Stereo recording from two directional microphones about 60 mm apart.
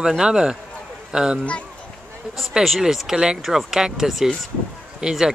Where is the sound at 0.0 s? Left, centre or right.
Centre.